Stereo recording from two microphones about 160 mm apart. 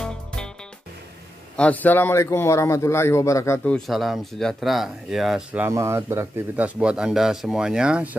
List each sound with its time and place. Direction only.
1.6 s a man's voice: 10° left (ahead or behind)
3.7 s speech: centre (ahead or behind)